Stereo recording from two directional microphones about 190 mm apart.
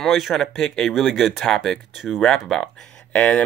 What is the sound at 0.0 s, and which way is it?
Speech, centre (ahead or behind).